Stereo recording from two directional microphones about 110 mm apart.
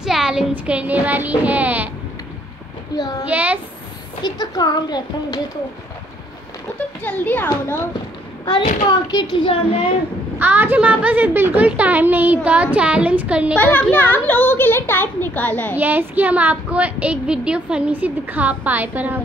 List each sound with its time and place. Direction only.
0.0 s child singing: 5° right (ahead or behind)
3.0 s a woman's voice: 35° left (ahead or behind)
3.3 s speech: 15° right (ahead or behind)
4.2 s a woman's voice: 40° left (ahead or behind)
7.0 s a child's voice: 15° left (ahead or behind)
9.1 s speech: 45° left (ahead or behind)
10.4 s speech: 15° right (ahead or behind)
13.6 s a child's voice: 15° left (ahead or behind)
15.7 s speech: 20° right (ahead or behind)